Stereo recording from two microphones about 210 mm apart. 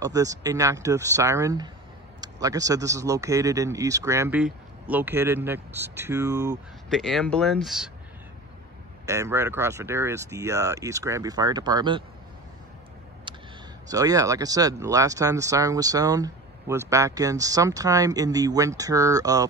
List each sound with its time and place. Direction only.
0.0 s speech: 15° right (ahead or behind)
6.9 s speech: centre (ahead or behind)
9.0 s speech: 15° right (ahead or behind)
13.3 s a sound: 20° right (ahead or behind)
13.8 s speech: 15° right (ahead or behind)